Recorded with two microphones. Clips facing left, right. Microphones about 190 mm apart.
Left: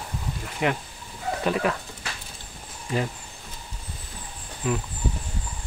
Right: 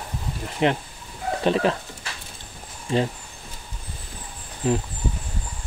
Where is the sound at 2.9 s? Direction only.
25° right (ahead or behind).